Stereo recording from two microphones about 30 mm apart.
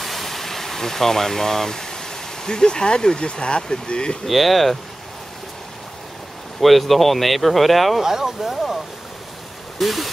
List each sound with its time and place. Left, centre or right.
0.0 s vehicle: centre; by 3.2 s left
3.2 s speech: left
4.3 s speech: centre
6.6 s speech: centre
8.0 s speech: centre
9.8 s speech: centre